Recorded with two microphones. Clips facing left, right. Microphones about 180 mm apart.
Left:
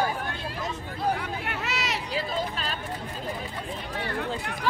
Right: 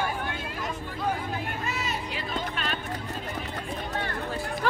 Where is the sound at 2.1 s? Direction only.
35° left (ahead or behind).